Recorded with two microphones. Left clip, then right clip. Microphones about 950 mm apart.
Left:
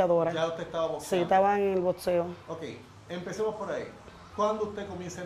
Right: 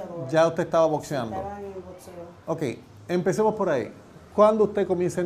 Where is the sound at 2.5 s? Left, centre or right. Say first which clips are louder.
Right 10 dB; right.